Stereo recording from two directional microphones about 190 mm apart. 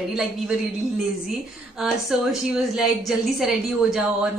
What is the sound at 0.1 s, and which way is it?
A woman's voice, centre (ahead or behind).